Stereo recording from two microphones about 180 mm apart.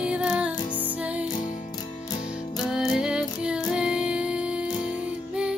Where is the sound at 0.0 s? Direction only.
5° right (ahead or behind).